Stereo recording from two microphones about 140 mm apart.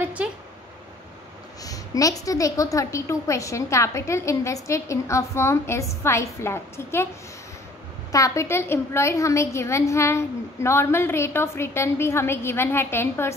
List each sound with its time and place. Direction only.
0.0 s a sound: 10° right (ahead or behind)
1.6 s a woman's voice: 25° left (ahead or behind)
8.1 s a woman's voice: 20° left (ahead or behind)